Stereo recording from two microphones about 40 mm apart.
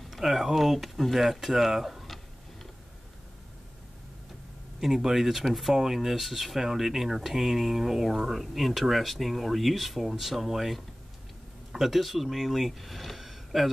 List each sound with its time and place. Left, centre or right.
0.1 s speech: centre
4.7 s speech: centre